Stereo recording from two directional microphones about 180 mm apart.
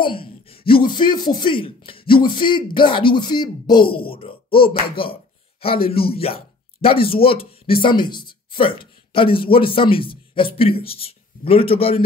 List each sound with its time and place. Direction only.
0.0 s speech: 30° left (ahead or behind)
4.9 s a sound: 30° left (ahead or behind)
5.9 s speech: 30° left (ahead or behind)